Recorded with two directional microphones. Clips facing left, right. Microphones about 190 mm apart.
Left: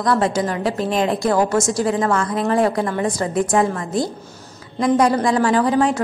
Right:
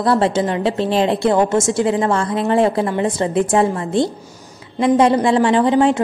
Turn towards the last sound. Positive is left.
turn(degrees=-20)  # may be behind; listen again after turning